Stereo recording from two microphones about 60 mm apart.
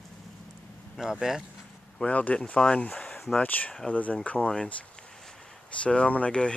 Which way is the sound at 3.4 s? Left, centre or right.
Left.